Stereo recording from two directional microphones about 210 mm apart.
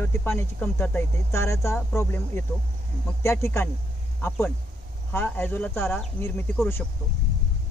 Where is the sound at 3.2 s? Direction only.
15° left (ahead or behind).